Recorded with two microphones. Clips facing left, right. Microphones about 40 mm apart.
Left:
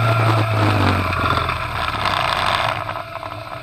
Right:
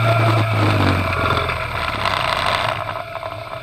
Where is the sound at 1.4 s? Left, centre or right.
Right.